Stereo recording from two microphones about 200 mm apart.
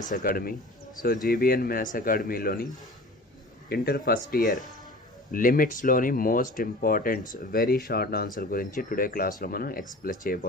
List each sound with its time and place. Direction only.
0.1 s speech: 45° left (ahead or behind)